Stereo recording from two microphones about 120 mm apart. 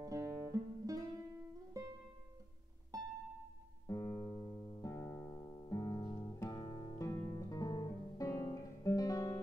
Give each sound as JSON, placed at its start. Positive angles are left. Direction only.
{"t": 0.0, "sound": "music", "side_deg": -30}
{"t": 2.9, "sound": "music", "side_deg": -30}
{"t": 3.8, "sound": "music", "side_deg": 25}
{"t": 7.2, "sound": "guitar", "side_deg": 30}